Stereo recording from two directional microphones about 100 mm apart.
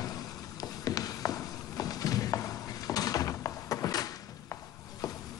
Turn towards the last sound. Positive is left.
turn(degrees=40)  # may be behind; listen again after turning